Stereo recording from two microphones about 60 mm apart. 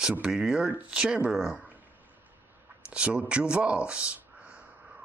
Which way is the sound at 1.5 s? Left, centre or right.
Right.